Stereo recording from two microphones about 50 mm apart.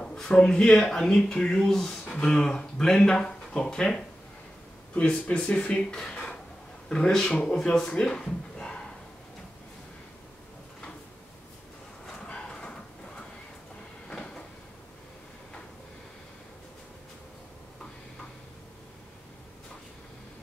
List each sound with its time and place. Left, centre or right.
0.0 s speech: centre
8.0 s a sound: centre
12.1 s bow-wow: centre
14.0 s cupboard open or close: centre